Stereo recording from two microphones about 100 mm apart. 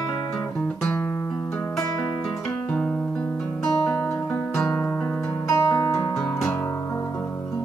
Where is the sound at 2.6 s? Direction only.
10° left (ahead or behind).